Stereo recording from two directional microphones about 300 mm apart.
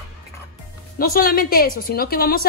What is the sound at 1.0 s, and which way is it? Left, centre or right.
A woman's voice, left.